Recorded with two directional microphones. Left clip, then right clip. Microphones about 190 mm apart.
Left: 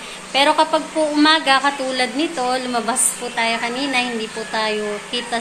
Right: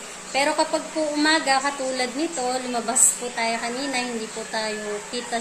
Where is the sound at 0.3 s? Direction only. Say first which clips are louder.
Left 7 dB; 5° right (ahead or behind).